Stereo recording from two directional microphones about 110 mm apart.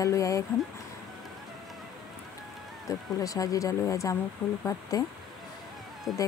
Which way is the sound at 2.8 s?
30° left (ahead or behind).